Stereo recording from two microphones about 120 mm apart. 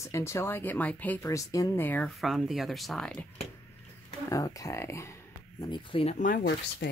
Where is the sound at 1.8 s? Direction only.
15° left (ahead or behind).